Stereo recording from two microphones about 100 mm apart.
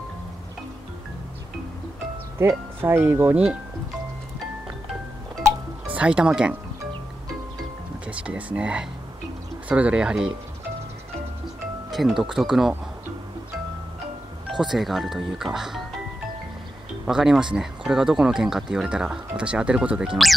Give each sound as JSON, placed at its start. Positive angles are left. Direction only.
{"t": 2.3, "sound": "speech", "side_deg": -25}
{"t": 5.9, "sound": "speech", "side_deg": -10}
{"t": 8.1, "sound": "speech", "side_deg": -10}
{"t": 11.9, "sound": "speech", "side_deg": 0}
{"t": 14.5, "sound": "speech", "side_deg": -5}
{"t": 17.0, "sound": "speech", "side_deg": -5}